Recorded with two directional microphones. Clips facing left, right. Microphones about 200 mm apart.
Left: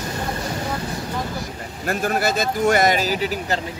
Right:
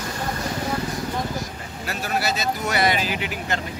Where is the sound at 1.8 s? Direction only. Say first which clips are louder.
Left 5 dB; 50° left (ahead or behind).